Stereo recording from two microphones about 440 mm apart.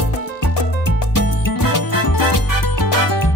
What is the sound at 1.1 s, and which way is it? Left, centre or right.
Music, left.